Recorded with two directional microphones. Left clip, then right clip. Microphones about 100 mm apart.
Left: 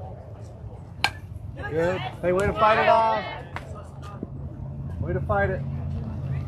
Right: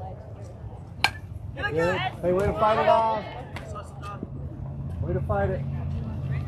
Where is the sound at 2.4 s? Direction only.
5° right (ahead or behind).